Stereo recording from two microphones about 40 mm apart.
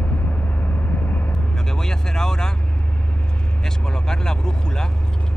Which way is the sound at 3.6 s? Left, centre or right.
Centre.